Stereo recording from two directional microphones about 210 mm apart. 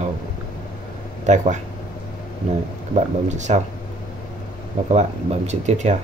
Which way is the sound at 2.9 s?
35° right (ahead or behind).